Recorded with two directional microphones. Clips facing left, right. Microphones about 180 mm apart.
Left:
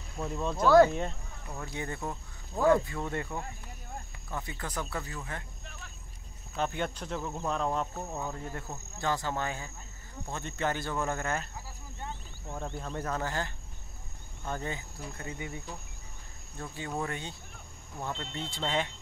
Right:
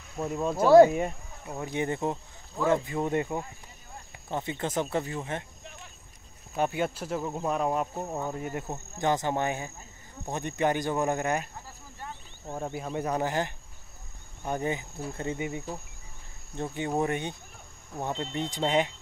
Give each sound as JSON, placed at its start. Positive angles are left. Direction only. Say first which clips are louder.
{"t": 0.3, "sound": "cricket", "louder": "right 4 dB", "side_deg": -5}
{"t": 1.4, "sound": "speech", "louder": "right 7 dB", "side_deg": -20}
{"t": 6.5, "sound": "cricket", "louder": "right 4 dB", "side_deg": -10}
{"t": 8.9, "sound": "speech", "louder": "right 5 dB", "side_deg": -20}
{"t": 10.3, "sound": "cricket", "louder": "right 6 dB", "side_deg": -15}
{"t": 12.4, "sound": "cricket", "louder": "right 4 dB", "side_deg": -10}
{"t": 16.5, "sound": "speech", "louder": "right 7 dB", "side_deg": -20}
{"t": 17.9, "sound": "cricket", "louder": "right 6 dB", "side_deg": -20}